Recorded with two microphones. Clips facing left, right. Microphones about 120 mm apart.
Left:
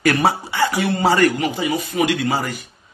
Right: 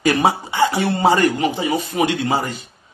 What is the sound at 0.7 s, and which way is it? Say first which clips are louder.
A man's voice: even; 30° right (ahead or behind).